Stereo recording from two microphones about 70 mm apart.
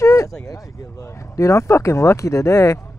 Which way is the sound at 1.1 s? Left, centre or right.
Left.